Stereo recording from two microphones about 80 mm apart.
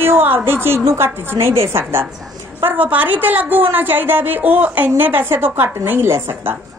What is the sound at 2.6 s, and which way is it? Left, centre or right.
A woman's voice, centre.